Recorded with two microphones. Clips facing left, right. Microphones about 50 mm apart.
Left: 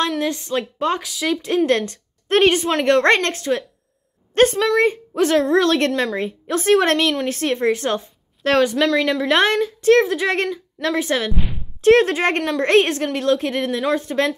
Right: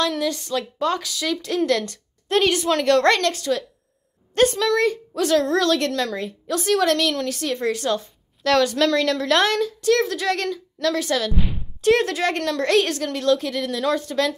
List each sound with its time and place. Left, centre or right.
0.2 s a woman's voice: left
1.7 s a woman's voice: left
8.7 s speech: centre
9.4 s a woman's voice: left